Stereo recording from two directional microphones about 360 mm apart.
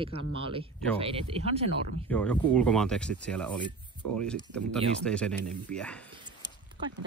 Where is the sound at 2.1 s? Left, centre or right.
Centre.